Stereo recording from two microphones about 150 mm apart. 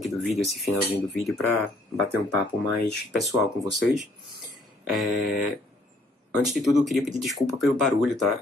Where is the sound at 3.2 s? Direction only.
Centre (ahead or behind).